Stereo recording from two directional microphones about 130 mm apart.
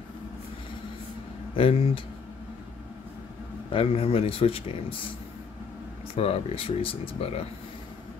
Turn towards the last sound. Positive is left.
turn(degrees=45)  # may be behind; listen again after turning